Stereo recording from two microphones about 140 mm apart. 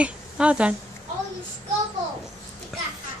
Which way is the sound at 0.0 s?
10° right (ahead or behind).